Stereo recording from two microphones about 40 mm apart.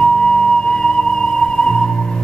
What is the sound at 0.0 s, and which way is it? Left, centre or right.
Music, centre.